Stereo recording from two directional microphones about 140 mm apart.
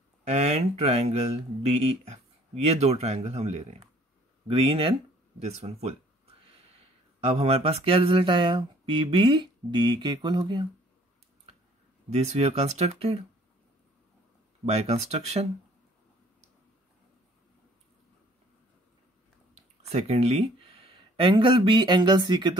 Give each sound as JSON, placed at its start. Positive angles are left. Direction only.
{"t": 0.3, "sound": "speech", "side_deg": -50}
{"t": 4.5, "sound": "a sound", "side_deg": -40}
{"t": 5.4, "sound": "speech", "side_deg": -45}
{"t": 7.2, "sound": "a sound", "side_deg": -45}
{"t": 12.1, "sound": "speech", "side_deg": -50}
{"t": 14.7, "sound": "speech", "side_deg": -50}
{"t": 19.5, "sound": "speech", "side_deg": -50}